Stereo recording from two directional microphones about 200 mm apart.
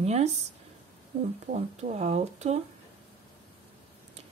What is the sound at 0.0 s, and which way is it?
Speech, 35° right (ahead or behind).